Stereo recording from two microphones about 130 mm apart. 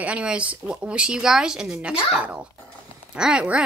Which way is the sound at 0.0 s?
10° right (ahead or behind).